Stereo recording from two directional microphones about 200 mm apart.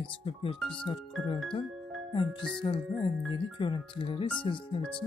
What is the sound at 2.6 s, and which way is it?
Speech, 25° left (ahead or behind).